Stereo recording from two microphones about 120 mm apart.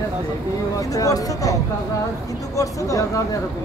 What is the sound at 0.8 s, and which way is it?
Speech, 30° left (ahead or behind).